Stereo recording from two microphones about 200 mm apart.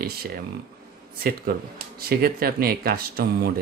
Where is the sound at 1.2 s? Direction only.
50° right (ahead or behind).